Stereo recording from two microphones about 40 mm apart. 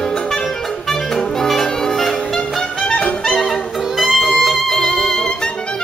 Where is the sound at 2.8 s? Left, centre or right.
Left.